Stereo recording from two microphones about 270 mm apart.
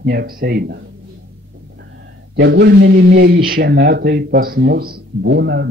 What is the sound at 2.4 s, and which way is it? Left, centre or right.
Speech, right.